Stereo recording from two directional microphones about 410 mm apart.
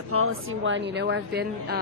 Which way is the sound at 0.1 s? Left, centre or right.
Right.